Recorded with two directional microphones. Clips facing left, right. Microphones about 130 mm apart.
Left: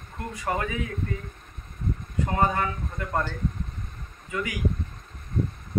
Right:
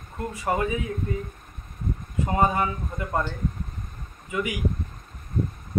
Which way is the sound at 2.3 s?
20° right (ahead or behind).